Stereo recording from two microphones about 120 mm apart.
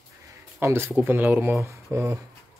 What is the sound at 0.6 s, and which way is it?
Speech, 20° right (ahead or behind).